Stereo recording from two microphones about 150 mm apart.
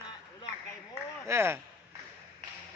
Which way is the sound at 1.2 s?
15° right (ahead or behind).